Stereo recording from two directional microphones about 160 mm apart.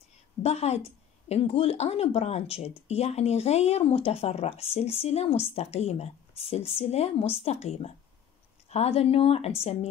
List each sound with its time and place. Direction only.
0.4 s speech: 40° left (ahead or behind)